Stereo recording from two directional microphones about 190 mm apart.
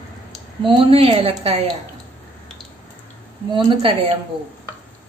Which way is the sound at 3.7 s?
30° right (ahead or behind).